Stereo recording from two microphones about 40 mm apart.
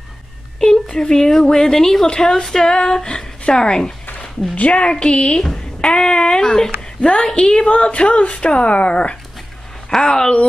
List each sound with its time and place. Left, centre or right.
0.6 s a woman's voice: centre
2.0 s speech: left
4.2 s speech: left
9.8 s a woman's voice: centre